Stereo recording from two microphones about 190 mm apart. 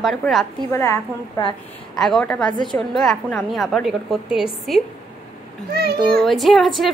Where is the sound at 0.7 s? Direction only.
15° left (ahead or behind).